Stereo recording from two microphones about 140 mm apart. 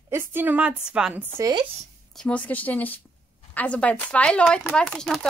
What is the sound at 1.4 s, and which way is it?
Speech, 30° right (ahead or behind).